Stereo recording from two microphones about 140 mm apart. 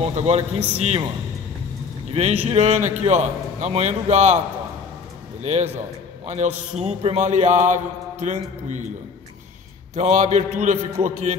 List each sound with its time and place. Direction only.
0.0 s a man's voice: 50° right (ahead or behind)
2.1 s a man's voice: 50° right (ahead or behind)
5.4 s a man's voice: 50° right (ahead or behind)
9.9 s a man's voice: 55° right (ahead or behind)